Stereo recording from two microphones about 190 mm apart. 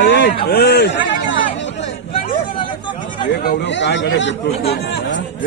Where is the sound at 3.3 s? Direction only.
65° left (ahead or behind).